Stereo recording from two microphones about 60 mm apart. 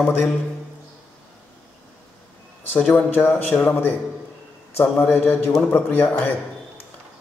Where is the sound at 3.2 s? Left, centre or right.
Left.